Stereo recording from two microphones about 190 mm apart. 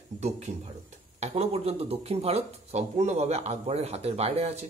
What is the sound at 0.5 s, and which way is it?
Speech, 35° right (ahead or behind).